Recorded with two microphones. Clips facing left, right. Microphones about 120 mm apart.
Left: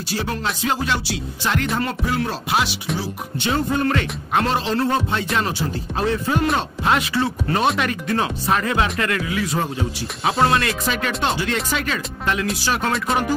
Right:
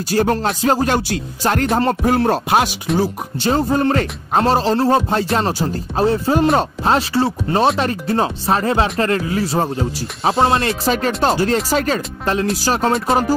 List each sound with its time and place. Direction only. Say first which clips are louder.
0.1 s speech: right 8 dB; 45° right (ahead or behind)
3.0 s speech: right 7 dB; 35° right (ahead or behind)